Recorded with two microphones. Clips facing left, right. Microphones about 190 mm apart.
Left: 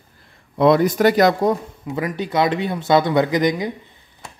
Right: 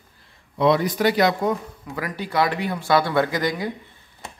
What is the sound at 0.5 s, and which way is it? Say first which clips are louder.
Speech: left 4 dB; 50° left (ahead or behind).